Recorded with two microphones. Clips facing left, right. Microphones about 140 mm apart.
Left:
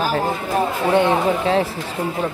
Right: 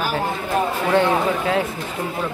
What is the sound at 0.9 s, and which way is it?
Speech, 20° left (ahead or behind).